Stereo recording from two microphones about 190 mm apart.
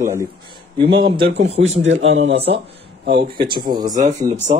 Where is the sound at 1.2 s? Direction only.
65° right (ahead or behind).